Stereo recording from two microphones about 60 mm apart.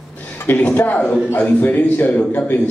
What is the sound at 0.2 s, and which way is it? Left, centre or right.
A man's voice, left.